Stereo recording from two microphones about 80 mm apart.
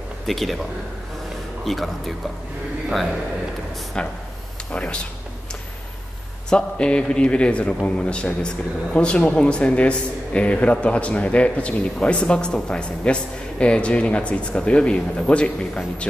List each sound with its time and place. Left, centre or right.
0.3 s a man's voice: centre
1.6 s a man's voice: centre
4.7 s a man's voice: centre
6.5 s a man's voice: centre